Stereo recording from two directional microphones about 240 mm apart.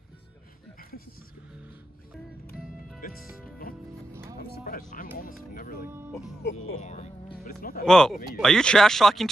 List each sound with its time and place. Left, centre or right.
3.0 s music: left
4.1 s music: centre
4.4 s music: left
5.9 s speech: centre
6.8 s music: left
7.8 s speech: centre